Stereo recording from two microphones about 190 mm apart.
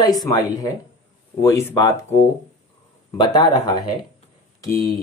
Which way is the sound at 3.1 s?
20° left (ahead or behind).